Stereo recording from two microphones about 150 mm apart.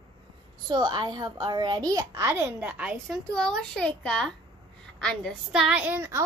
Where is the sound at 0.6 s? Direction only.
30° right (ahead or behind); by 5.3 s 5° left (ahead or behind).